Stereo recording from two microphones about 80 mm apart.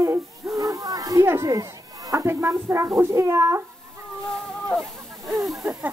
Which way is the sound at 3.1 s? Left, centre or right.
Right.